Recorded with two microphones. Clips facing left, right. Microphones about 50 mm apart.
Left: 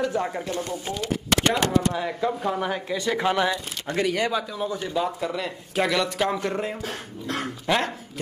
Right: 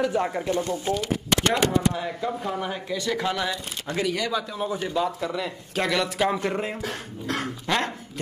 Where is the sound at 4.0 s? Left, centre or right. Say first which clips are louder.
Left 3 dB; left.